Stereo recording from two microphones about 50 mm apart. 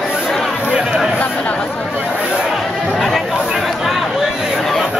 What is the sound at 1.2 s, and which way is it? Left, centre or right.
Chatter, left.